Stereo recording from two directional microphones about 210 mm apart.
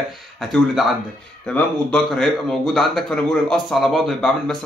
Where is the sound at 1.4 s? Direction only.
5° left (ahead or behind).